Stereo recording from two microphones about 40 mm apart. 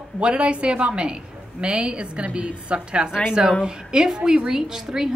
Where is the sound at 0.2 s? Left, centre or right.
Right.